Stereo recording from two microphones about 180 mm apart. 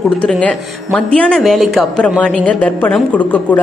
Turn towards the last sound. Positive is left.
turn(degrees=10)  # may be behind; listen again after turning